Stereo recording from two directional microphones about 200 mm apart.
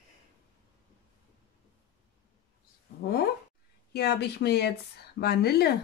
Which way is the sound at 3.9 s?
55° left (ahead or behind).